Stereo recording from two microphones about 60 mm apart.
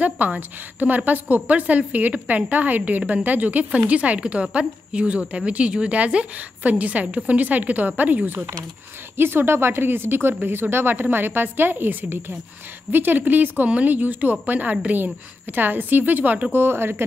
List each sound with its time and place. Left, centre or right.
0.0 s a woman's voice: right
3.0 s a woman's voice: centre
3.3 s a woman's voice: right
9.1 s a woman's voice: right
16.5 s speech: right